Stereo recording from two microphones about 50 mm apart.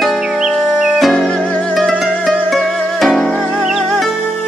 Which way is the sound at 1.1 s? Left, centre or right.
Centre.